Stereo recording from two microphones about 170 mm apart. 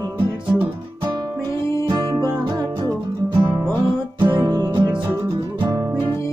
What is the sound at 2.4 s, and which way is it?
Music, 25° right (ahead or behind).